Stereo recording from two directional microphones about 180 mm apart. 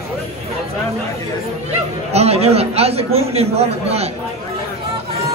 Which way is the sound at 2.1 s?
35° right (ahead or behind).